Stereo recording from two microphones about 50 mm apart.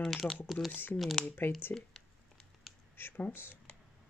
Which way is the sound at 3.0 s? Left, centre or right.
Left.